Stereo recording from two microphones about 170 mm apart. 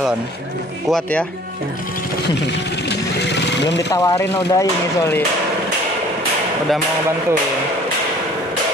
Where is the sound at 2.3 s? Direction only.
90° left.